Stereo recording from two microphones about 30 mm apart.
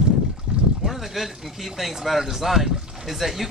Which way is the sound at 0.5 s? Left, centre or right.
Right.